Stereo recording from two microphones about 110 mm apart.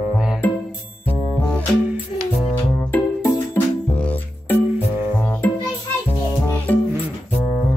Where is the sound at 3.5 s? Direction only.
10° left (ahead or behind).